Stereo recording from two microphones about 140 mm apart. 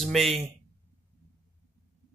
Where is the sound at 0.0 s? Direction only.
Centre (ahead or behind).